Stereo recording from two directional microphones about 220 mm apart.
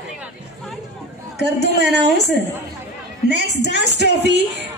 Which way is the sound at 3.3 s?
50° right (ahead or behind).